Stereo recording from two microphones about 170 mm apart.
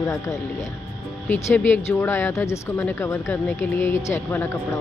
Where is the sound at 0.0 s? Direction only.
20° left (ahead or behind).